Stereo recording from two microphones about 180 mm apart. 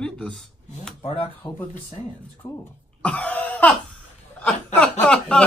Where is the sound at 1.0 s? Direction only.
35° left (ahead or behind).